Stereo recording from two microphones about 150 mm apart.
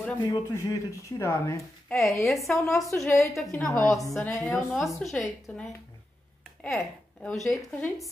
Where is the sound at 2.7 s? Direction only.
Centre (ahead or behind).